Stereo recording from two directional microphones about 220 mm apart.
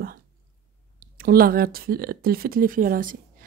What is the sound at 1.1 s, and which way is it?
Speech, 40° right (ahead or behind).